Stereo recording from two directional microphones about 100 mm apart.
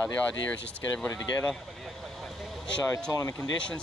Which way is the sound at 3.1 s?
35° left (ahead or behind).